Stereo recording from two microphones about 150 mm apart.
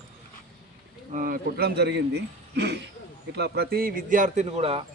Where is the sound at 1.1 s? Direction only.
70° right (ahead or behind).